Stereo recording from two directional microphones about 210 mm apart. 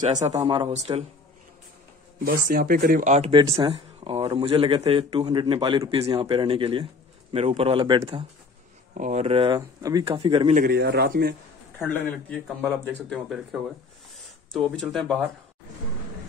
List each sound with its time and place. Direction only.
0.1 s speech: 35° right (ahead or behind)
2.1 s speech: 40° right (ahead or behind); by 8.3 s 25° right (ahead or behind)
8.9 s speech: 35° right (ahead or behind)
9.6 s speech: 15° right (ahead or behind)
10.1 s speech: 25° right (ahead or behind)
10.6 s a man's voice: 50° right (ahead or behind)
12.1 s speech: 5° left (ahead or behind)